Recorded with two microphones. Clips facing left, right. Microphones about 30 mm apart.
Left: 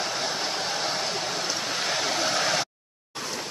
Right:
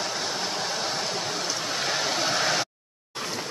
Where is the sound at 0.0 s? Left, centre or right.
Centre.